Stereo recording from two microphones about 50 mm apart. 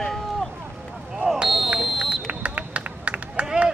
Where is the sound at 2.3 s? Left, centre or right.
Right.